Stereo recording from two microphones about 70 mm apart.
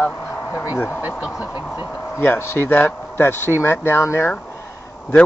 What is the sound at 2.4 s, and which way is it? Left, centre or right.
Speech, left.